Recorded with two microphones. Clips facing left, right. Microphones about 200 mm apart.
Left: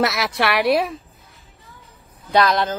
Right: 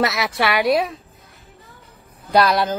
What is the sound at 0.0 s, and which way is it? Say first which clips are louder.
Speech: even; centre (ahead or behind).